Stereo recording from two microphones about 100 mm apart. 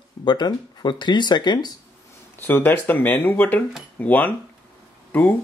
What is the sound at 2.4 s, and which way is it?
Speech, 20° left (ahead or behind).